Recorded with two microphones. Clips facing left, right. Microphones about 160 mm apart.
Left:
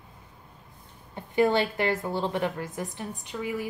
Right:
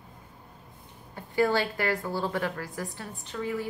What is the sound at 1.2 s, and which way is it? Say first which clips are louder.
A woman's voice: left 2 dB; 20° left (ahead or behind).